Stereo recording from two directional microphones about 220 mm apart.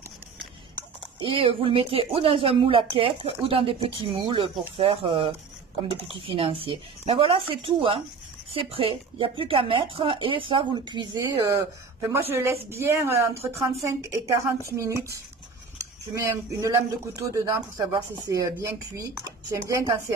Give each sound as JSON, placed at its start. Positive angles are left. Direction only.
{"t": 1.2, "sound": "speech", "side_deg": -25}